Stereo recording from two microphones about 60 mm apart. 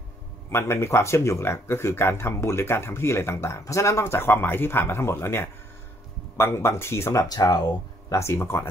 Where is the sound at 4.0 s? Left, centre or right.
Left.